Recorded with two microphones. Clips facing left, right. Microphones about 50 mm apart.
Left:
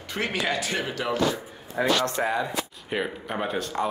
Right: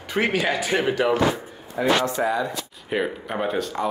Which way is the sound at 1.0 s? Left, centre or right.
Right.